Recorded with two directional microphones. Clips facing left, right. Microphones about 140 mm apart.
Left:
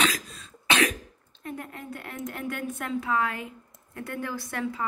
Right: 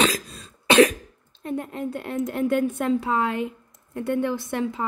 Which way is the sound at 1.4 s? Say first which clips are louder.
Right 8 dB; 25° right (ahead or behind).